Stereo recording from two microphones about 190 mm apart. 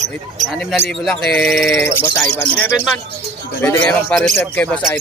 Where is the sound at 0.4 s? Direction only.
Centre (ahead or behind).